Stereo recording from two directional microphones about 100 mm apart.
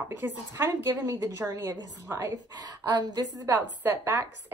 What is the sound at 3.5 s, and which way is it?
Speech, 20° right (ahead or behind).